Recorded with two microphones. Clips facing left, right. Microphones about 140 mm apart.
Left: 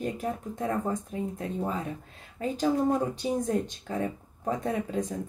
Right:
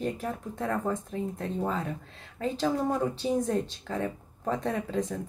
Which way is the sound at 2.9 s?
15° left (ahead or behind).